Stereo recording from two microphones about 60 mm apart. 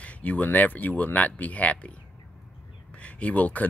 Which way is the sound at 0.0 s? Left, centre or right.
Left.